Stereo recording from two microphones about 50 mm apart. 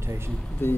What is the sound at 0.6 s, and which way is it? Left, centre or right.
Music, left.